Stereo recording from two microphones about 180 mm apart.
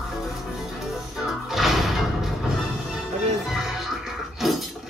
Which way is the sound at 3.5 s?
Centre (ahead or behind).